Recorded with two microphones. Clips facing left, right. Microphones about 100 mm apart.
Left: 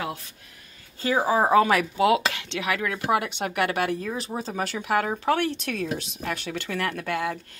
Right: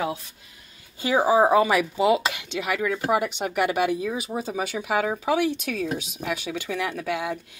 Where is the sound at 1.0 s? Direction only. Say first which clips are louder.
Right 3 dB; 10° right (ahead or behind).